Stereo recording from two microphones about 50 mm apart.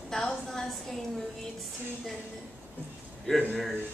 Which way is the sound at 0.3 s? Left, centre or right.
Centre.